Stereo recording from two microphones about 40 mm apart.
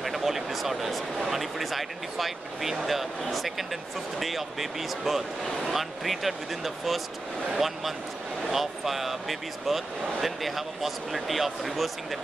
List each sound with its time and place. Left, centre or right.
0.0 s speech: centre